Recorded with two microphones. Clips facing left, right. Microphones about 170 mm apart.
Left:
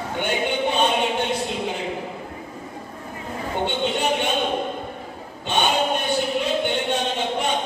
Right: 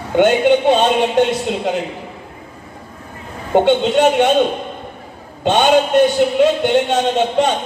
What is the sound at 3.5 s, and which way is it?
Speech, 90° right.